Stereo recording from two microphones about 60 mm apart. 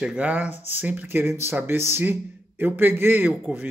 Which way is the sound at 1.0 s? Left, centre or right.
Right.